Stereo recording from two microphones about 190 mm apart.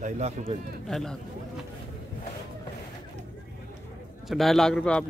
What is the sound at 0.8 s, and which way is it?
Speech, centre (ahead or behind).